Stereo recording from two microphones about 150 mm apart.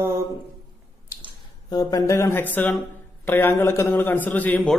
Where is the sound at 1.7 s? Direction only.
25° left (ahead or behind).